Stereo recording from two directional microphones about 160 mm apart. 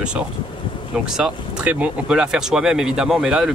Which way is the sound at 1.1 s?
5° right (ahead or behind).